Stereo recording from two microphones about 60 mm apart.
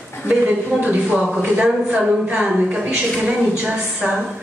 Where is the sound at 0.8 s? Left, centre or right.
Right.